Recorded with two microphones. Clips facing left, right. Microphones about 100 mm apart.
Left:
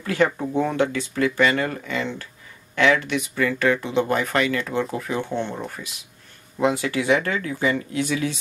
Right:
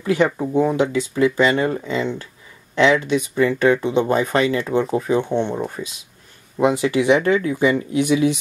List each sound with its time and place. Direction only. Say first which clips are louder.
0.0 s speech: right 3 dB; 15° right (ahead or behind)
6.6 s speech: right 5 dB; 20° right (ahead or behind)